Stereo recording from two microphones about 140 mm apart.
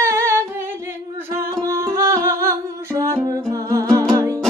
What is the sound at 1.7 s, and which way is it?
Music, 20° right (ahead or behind).